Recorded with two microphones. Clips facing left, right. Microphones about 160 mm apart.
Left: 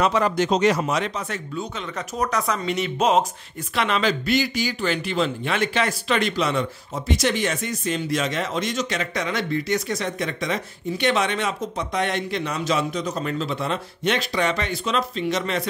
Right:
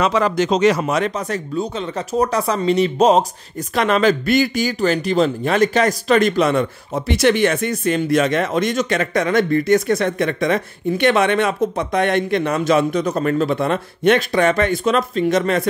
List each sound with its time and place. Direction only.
0.0 s speech: 90° right; by 3.3 s 35° right (ahead or behind)
3.7 s speech: 45° right (ahead or behind)